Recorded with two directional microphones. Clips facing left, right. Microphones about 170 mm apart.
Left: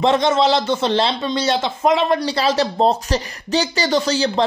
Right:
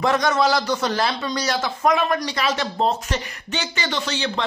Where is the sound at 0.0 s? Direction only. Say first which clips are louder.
Left 4 dB; 25° left (ahead or behind).